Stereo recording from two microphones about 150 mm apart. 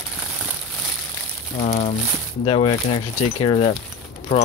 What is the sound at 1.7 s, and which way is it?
Speech, 50° left (ahead or behind).